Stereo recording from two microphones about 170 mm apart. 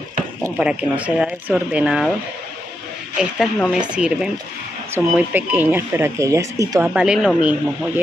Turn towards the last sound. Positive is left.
turn(degrees=-5)  # may be behind; listen again after turning